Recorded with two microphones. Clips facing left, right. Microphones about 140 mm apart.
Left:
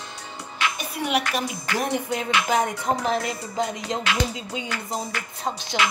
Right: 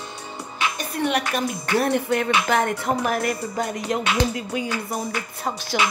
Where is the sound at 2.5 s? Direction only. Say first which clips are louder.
Even; 65° right (ahead or behind).